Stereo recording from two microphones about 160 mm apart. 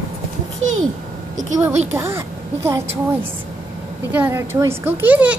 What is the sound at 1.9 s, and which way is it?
Speech, 15° right (ahead or behind).